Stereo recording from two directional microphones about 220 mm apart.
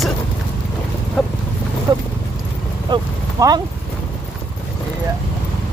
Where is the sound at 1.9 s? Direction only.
15° right (ahead or behind).